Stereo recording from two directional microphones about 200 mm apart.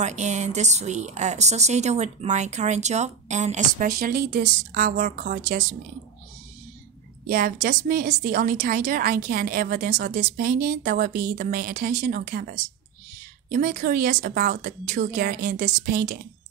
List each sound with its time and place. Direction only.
0.0 s speech: 35° right (ahead or behind)
7.2 s a woman's voice: 45° right (ahead or behind)